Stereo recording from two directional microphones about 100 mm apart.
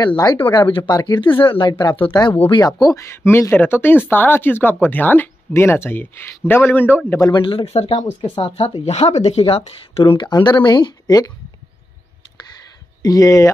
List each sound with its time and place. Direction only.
0.0 s speech: 45° left (ahead or behind)
1.4 s speech: 55° left (ahead or behind)
2.5 s speech: 40° left (ahead or behind)
3.2 s speech: 25° left (ahead or behind)
7.2 s speech: 45° left (ahead or behind)
7.5 s speech: 90° left
8.4 s speech: 75° left (ahead or behind); by 9.4 s 90° left
9.5 s speech: 75° left (ahead or behind)
10.1 s speech: 50° left (ahead or behind)
13.0 s speech: 35° left (ahead or behind)